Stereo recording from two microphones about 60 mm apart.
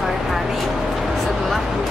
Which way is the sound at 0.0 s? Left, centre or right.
Centre.